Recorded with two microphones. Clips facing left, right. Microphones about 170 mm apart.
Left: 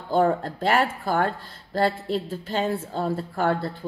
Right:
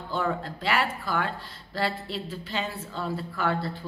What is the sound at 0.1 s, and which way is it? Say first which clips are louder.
Speech: left 8 dB; 45° left (ahead or behind).